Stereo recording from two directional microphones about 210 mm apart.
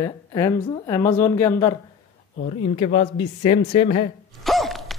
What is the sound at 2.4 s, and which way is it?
Speech, 35° left (ahead or behind).